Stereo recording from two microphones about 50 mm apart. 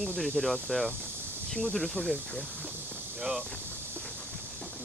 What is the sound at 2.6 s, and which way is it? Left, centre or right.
Hiss, right.